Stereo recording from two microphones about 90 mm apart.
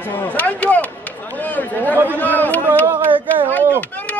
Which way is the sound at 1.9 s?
25° right (ahead or behind).